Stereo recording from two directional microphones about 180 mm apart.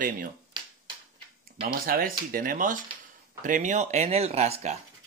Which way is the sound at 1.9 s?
55° right (ahead or behind).